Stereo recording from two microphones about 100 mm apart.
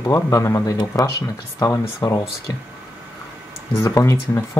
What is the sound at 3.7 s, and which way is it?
Speech, 30° left (ahead or behind).